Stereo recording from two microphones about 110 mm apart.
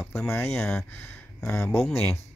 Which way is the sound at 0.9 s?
20° left (ahead or behind).